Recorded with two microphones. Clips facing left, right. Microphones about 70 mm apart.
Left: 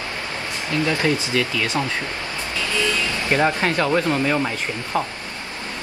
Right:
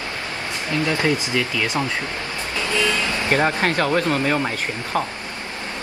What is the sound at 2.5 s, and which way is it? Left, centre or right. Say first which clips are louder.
Vehicle: right 1 dB; right.